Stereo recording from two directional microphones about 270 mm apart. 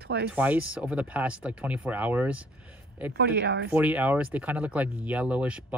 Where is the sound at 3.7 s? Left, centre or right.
Centre.